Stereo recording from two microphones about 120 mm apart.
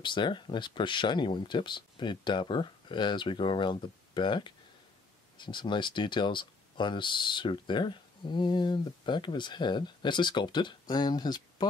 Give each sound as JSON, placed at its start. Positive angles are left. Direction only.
{"t": 0.0, "sound": "speech", "side_deg": 40}